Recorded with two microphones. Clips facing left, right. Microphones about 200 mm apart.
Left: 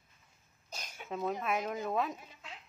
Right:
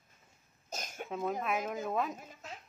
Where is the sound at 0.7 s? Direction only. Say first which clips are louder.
Right 6 dB; 45° right (ahead or behind).